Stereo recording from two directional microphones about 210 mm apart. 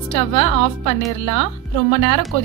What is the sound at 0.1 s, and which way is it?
A woman's voice, 25° left (ahead or behind).